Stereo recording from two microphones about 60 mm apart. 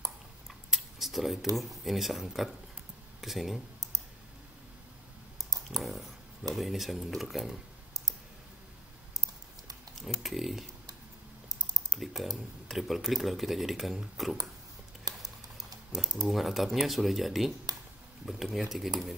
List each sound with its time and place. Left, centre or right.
0.5 s tick-tock: centre
1.6 s speech: centre
5.4 s clicking: right
5.8 s speech: centre
9.9 s speech: centre
11.9 s speech: centre
15.1 s typing: right
15.5 s typing: centre
16.3 s speech: centre
17.7 s a sound: right
18.2 s speech: centre